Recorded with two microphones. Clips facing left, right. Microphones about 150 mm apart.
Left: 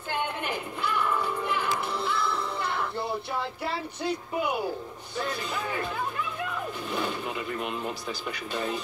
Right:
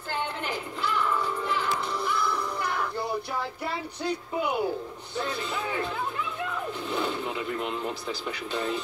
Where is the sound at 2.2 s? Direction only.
25° left (ahead or behind).